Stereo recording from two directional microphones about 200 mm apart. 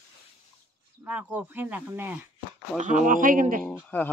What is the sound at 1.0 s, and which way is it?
Speech, 5° right (ahead or behind).